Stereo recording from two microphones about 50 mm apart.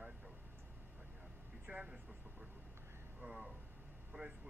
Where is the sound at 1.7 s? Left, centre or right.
Right.